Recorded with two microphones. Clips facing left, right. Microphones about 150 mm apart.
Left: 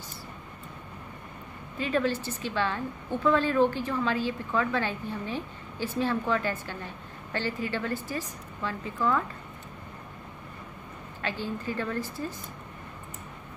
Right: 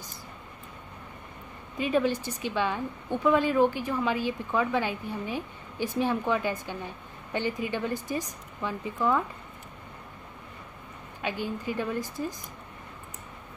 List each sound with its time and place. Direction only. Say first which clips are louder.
1.8 s a woman's voice: right 2 dB; 15° right (ahead or behind)
11.1 s a woman's voice: right 1 dB; 15° right (ahead or behind)